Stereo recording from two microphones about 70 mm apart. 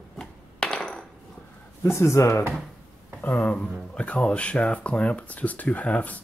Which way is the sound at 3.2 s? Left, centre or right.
Left.